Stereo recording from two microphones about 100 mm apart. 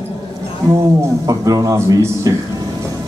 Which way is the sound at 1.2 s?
35° right (ahead or behind).